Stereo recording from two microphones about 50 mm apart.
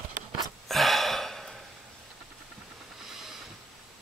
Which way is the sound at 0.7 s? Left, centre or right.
Centre.